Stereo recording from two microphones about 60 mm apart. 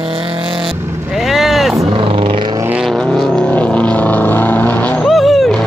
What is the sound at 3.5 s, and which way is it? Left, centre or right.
Vehicle, left.